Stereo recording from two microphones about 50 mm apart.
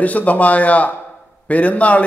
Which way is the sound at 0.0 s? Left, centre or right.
Left.